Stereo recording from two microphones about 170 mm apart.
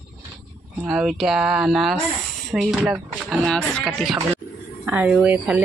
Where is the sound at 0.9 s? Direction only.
Centre (ahead or behind).